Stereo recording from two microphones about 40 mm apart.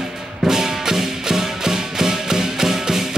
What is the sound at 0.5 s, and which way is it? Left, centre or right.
Music, centre.